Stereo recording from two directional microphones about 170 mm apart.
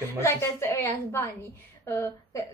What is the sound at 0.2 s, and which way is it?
A woman's voice, 15° left (ahead or behind).